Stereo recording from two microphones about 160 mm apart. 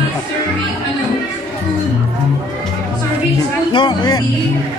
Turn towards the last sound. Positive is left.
turn(degrees=25)  # may be behind; listen again after turning